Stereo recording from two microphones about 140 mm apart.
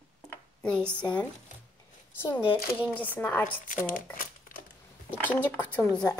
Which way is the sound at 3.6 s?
70° left (ahead or behind).